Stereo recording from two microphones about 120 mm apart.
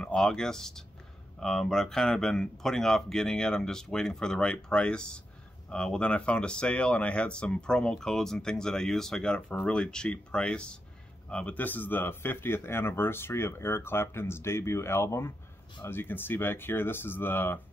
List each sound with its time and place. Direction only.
0.0 s speech: 5° left (ahead or behind)